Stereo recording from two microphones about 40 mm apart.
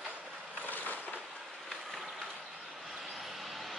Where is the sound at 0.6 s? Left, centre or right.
Left.